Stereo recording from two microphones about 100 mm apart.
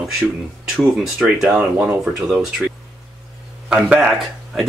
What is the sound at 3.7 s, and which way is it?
Speech, 5° right (ahead or behind).